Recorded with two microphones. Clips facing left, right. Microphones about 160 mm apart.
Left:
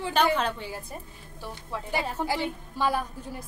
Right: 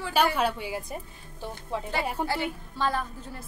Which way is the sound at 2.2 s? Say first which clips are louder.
Even; 10° left (ahead or behind).